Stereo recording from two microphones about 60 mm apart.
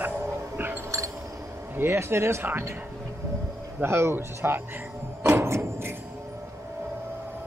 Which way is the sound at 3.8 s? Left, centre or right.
Right.